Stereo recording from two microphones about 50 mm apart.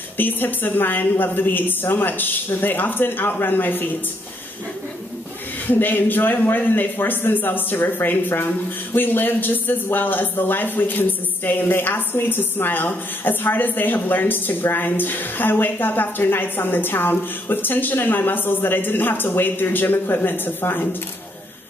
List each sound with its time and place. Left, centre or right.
0.2 s a woman's voice: left
5.7 s a woman's voice: left